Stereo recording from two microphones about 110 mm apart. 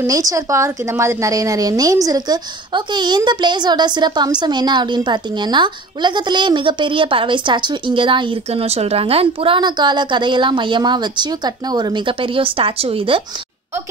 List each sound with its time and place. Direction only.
0.0 s a woman's voice: 30° right (ahead or behind); by 8.4 s 50° right (ahead or behind)
8.5 s a woman's voice: 75° right (ahead or behind)
9.6 s a woman's voice: 40° right (ahead or behind)